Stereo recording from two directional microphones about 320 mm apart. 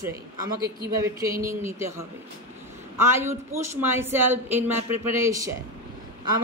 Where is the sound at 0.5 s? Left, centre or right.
Right.